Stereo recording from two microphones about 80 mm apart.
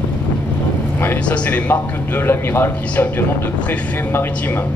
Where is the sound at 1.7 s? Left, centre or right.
Left.